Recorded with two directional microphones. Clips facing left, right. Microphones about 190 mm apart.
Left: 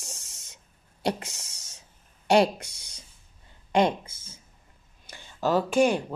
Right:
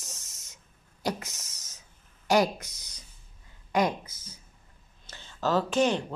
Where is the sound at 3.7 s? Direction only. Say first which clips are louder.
Left 3 dB; 25° left (ahead or behind).